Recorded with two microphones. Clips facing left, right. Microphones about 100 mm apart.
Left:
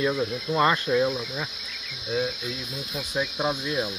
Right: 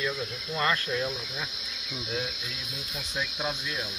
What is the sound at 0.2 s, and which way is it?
Cricket, 30° left (ahead or behind).